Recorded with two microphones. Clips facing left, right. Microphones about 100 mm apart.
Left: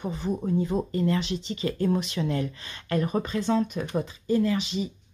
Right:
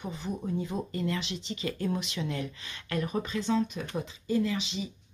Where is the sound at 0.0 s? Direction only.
45° left (ahead or behind).